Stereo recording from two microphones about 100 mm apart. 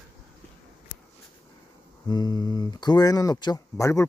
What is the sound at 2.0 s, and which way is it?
Speech, 40° left (ahead or behind).